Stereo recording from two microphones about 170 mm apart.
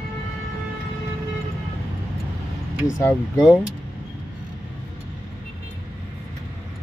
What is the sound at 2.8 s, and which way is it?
Speech, 15° left (ahead or behind).